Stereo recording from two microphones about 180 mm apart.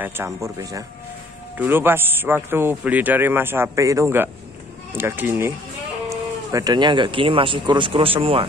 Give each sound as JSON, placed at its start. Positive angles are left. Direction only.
{"t": 0.0, "sound": "a man's voice", "side_deg": -15}